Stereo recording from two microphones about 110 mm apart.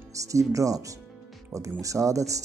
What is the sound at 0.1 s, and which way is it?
Speech, 30° right (ahead or behind).